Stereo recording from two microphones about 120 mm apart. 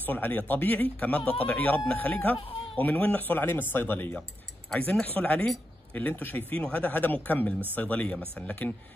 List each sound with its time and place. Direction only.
0.0 s speech: 15° left (ahead or behind)